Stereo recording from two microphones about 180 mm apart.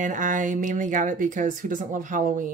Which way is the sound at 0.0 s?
45° right (ahead or behind).